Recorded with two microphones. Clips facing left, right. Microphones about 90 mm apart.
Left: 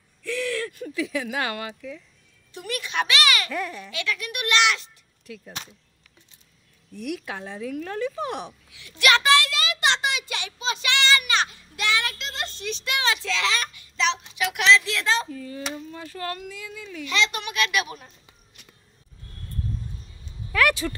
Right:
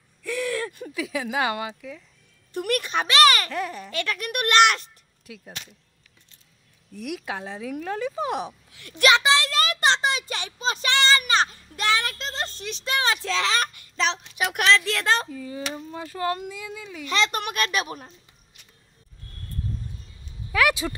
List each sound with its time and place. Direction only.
0.2 s a sound: 10° right (ahead or behind)
0.8 s a woman's voice: 10° right (ahead or behind)
2.5 s a child's voice: 50° right (ahead or behind)
2.9 s a child's voice: 35° right (ahead or behind)
5.3 s speech: 10° right (ahead or behind)
6.9 s a woman's voice: 5° right (ahead or behind)
8.7 s a woman's voice: 50° right (ahead or behind)
9.1 s a sound: 25° right (ahead or behind)
9.5 s child singing: 45° right (ahead or behind)
12.6 s a child's voice: 35° right (ahead or behind); by 15.2 s 50° right (ahead or behind)
16.2 s speech: 20° right (ahead or behind)
17.0 s a child's voice: 40° right (ahead or behind)
20.5 s speech: 10° right (ahead or behind)